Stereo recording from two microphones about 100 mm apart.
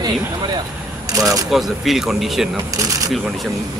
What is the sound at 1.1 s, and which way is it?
Speech, 35° right (ahead or behind).